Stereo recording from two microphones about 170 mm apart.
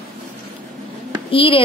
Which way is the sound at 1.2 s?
30° left (ahead or behind).